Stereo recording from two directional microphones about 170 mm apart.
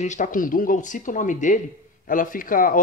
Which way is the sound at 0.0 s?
45° left (ahead or behind).